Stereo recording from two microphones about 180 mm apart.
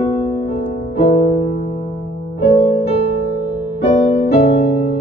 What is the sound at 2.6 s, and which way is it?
Music, 35° left (ahead or behind).